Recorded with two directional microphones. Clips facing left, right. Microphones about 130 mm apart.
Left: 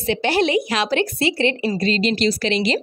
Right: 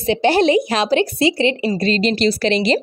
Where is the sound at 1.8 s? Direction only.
35° right (ahead or behind).